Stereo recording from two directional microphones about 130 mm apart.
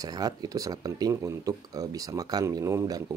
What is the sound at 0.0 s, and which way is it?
Speech, 30° right (ahead or behind).